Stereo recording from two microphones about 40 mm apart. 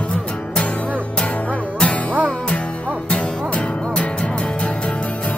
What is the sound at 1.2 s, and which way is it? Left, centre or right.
Music, left.